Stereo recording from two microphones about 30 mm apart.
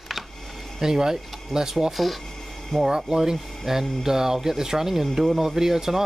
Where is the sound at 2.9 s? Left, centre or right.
Right.